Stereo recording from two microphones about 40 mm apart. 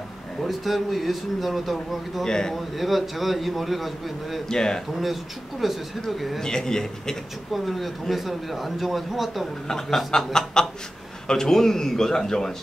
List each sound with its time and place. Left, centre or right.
0.4 s speech: centre
2.2 s a man's voice: centre
2.5 s speech: centre
4.5 s a man's voice: centre
5.0 s speech: centre
6.4 s a man's voice: centre
7.5 s speech: centre
9.7 s a man's voice: centre